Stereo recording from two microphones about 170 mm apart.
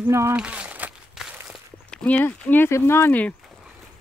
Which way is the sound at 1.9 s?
5° left (ahead or behind).